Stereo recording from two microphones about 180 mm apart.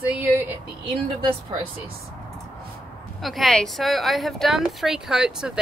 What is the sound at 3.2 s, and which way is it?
Speech, centre (ahead or behind).